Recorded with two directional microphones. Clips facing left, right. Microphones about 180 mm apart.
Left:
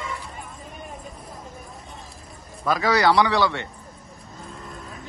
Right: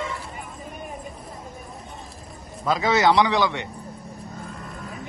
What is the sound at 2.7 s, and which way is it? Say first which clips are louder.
A man's voice: even; 20° right (ahead or behind).